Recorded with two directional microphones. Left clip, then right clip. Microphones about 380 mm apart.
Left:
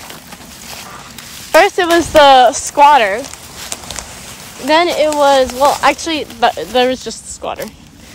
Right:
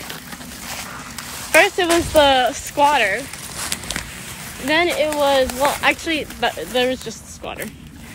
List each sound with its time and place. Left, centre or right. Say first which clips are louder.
1.5 s speech: left 5 dB; centre
4.6 s speech: left 6 dB; centre